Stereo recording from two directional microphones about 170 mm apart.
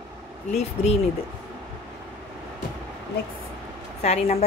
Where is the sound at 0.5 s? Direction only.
40° left (ahead or behind).